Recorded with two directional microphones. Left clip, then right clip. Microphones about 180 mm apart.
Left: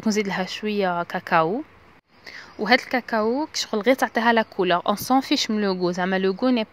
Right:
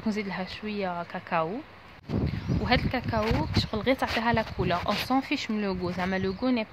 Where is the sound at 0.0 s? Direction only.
45° left (ahead or behind).